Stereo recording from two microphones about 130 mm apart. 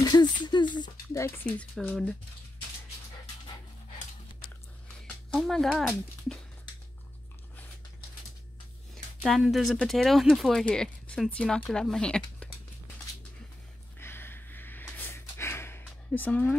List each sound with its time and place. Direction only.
0.0 s a sound: 35° left (ahead or behind)
1.6 s speech: 5° left (ahead or behind)
5.4 s speech: 5° left (ahead or behind)
9.2 s speech: 5° right (ahead or behind)
13.9 s snort: 15° left (ahead or behind)